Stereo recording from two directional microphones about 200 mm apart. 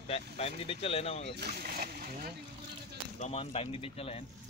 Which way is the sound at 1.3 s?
50° right (ahead or behind).